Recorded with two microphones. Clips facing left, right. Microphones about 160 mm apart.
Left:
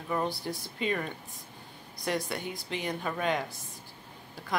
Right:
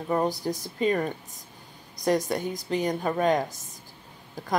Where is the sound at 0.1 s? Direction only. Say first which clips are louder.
Right 6 dB; 40° right (ahead or behind).